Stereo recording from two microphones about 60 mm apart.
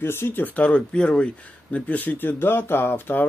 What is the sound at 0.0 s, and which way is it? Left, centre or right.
Speech, left.